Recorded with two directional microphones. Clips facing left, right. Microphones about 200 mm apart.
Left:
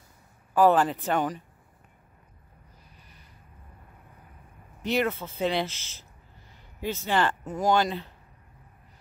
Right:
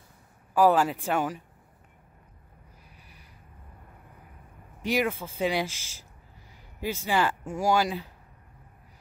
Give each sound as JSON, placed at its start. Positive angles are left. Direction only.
{"t": 0.6, "sound": "speech", "side_deg": -10}
{"t": 4.8, "sound": "speech", "side_deg": -10}